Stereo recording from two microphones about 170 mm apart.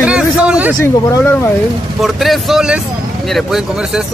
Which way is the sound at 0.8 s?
15° left (ahead or behind).